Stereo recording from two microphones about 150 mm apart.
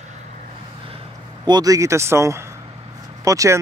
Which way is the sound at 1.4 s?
25° right (ahead or behind).